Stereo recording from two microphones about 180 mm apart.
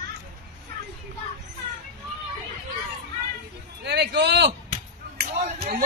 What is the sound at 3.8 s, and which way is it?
Speech, 70° right (ahead or behind).